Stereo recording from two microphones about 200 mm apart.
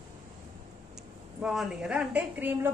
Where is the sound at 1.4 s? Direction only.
5° right (ahead or behind).